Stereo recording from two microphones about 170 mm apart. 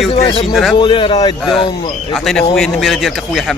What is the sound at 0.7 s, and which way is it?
Speech, 30° left (ahead or behind).